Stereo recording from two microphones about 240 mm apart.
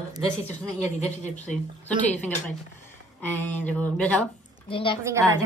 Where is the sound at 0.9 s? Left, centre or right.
Left.